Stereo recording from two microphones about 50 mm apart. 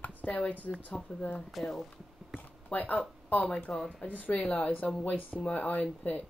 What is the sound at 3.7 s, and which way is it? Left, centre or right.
Speech, centre.